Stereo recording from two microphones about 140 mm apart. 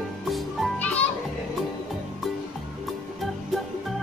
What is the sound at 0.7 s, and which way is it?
Music, 10° left (ahead or behind).